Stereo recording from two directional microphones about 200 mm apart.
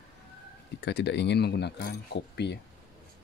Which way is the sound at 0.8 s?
60° left (ahead or behind).